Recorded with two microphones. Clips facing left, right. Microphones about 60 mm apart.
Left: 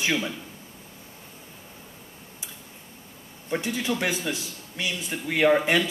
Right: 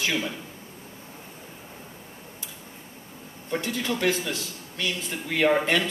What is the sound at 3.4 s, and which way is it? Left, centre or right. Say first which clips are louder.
A man's voice: left 1 dB; centre.